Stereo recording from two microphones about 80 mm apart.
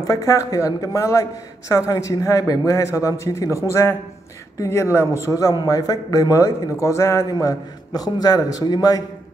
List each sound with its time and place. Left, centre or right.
0.0 s a man's voice: left